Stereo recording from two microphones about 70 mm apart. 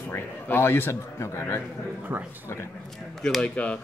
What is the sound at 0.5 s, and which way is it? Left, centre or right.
Speech, left.